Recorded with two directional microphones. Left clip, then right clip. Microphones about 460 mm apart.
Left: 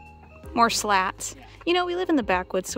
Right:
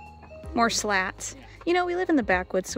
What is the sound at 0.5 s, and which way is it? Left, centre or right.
Speech, centre.